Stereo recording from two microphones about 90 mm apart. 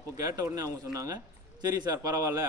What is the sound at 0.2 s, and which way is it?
A man's voice, 40° right (ahead or behind).